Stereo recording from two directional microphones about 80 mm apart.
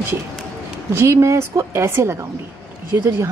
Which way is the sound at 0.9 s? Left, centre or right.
Right.